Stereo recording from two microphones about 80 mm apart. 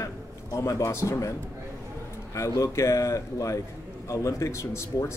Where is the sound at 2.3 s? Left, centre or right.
Left.